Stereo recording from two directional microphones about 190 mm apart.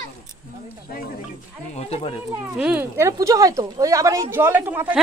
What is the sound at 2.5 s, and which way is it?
Speech, 5° right (ahead or behind).